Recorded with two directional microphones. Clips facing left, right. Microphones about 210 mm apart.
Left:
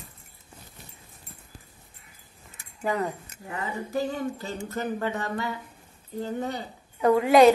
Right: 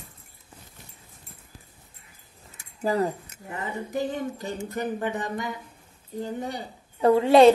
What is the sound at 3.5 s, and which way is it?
Speech, 20° right (ahead or behind).